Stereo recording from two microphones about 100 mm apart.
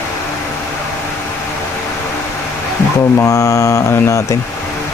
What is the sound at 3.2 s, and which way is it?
Mantra, 30° left (ahead or behind).